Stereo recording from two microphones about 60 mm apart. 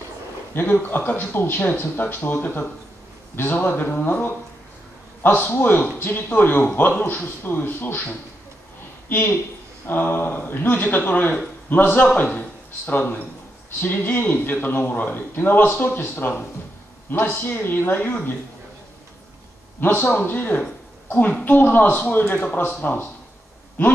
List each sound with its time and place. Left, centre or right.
0.6 s a man's voice: left
9.8 s a man's voice: left
19.8 s a man's voice: left